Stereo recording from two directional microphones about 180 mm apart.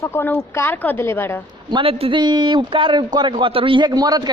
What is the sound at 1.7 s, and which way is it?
Speech, 30° right (ahead or behind).